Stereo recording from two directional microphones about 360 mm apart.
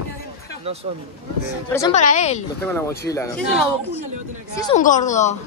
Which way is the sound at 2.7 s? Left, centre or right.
Centre.